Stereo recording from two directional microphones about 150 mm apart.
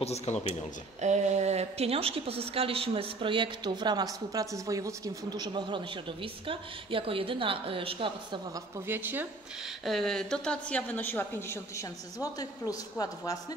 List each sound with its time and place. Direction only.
0.0 s speech: 45° left (ahead or behind)
1.0 s a woman's voice: 50° right (ahead or behind)
8.5 s speech: 15° right (ahead or behind)
9.8 s a woman's voice: centre (ahead or behind); by 13.4 s 25° left (ahead or behind)